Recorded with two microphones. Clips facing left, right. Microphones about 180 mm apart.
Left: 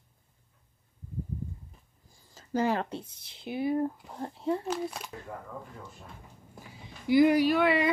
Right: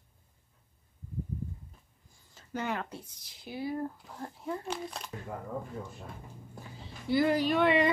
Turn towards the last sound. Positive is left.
turn(degrees=5)  # may be behind; listen again after turning